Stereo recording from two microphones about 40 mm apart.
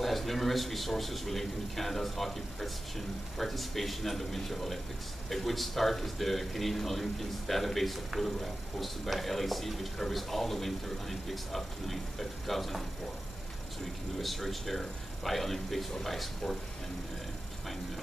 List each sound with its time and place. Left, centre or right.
0.0 s speech: centre
14.1 s speech: centre